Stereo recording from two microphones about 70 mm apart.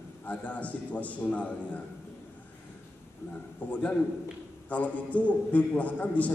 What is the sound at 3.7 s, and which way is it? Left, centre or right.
A man's voice, left.